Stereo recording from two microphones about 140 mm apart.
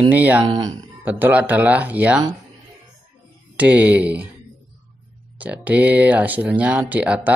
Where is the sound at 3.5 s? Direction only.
10° right (ahead or behind).